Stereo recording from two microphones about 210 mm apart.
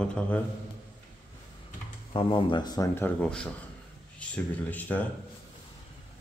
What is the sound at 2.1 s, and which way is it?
Speech, 25° left (ahead or behind).